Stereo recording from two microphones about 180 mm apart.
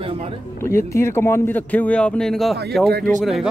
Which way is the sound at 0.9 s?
15° left (ahead or behind).